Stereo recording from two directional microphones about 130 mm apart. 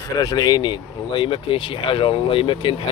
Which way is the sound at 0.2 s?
30° left (ahead or behind).